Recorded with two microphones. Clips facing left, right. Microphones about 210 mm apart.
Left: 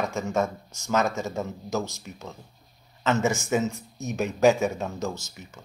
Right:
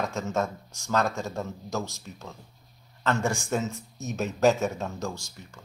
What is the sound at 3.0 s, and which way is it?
Speech, 5° left (ahead or behind).